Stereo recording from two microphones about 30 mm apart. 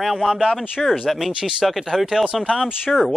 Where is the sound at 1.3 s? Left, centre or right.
Right.